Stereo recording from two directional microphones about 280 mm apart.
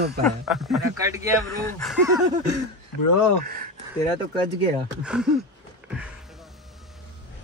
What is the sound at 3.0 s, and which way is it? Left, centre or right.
Speech, left.